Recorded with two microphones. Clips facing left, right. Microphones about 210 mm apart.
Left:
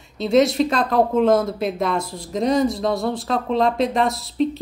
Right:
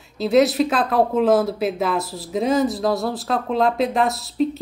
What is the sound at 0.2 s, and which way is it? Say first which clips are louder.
A woman's voice: even; centre (ahead or behind).